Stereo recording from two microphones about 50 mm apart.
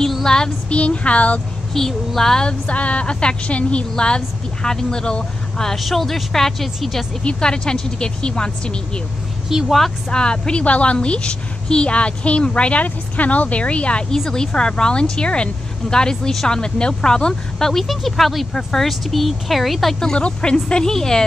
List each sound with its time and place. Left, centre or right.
0.0 s child singing: centre
0.7 s a woman's voice: left
1.7 s speech: centre
2.6 s a woman's voice: left; by 7.1 s centre
7.2 s speech: centre
9.5 s a woman's voice: centre
10.0 s a woman's voice: centre
14.1 s speech: centre
20.2 s a woman's voice: left